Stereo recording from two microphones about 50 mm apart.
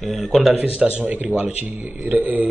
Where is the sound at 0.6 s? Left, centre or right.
Right.